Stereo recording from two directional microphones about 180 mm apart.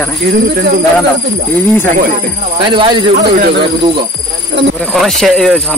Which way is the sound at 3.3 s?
60° right (ahead or behind).